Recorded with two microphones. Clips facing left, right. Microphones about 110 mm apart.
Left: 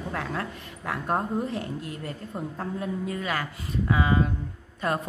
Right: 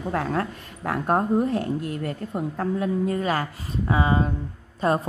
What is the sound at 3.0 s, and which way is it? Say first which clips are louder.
Speech: right 6 dB; 35° right (ahead or behind).